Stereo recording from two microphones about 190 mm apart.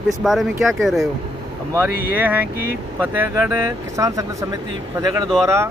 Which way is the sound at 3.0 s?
10° right (ahead or behind).